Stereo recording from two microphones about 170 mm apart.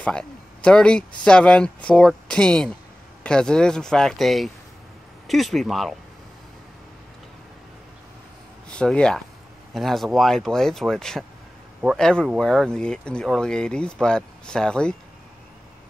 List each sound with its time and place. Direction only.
0.0 s speech: 5° left (ahead or behind)
8.6 s speech: 5° left (ahead or behind)